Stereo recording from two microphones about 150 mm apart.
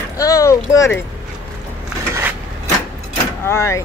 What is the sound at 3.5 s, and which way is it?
Speech, 20° left (ahead or behind).